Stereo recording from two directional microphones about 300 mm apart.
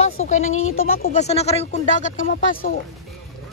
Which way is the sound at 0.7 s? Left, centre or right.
Left.